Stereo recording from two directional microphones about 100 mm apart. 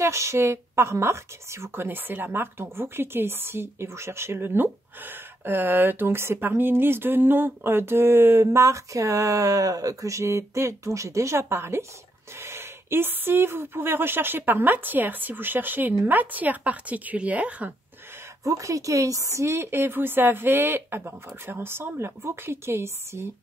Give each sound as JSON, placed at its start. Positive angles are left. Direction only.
{"t": 0.0, "sound": "speech", "side_deg": -30}
{"t": 18.4, "sound": "speech", "side_deg": -30}